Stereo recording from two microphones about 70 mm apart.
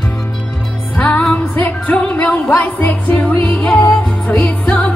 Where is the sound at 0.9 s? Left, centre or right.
Left.